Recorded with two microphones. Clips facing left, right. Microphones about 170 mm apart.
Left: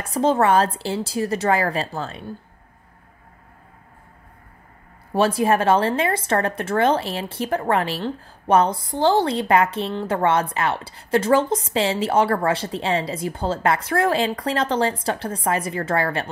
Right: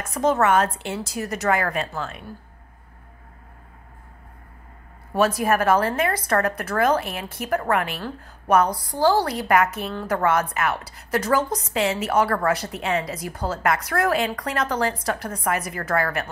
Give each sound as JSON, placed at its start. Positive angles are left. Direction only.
{"t": 0.0, "sound": "a woman's voice", "side_deg": 30}
{"t": 5.1, "sound": "speech", "side_deg": 30}